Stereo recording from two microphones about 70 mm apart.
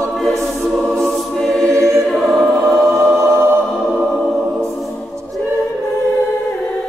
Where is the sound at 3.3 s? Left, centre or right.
Right.